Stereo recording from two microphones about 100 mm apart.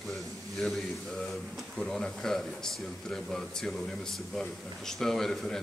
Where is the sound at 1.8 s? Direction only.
5° left (ahead or behind).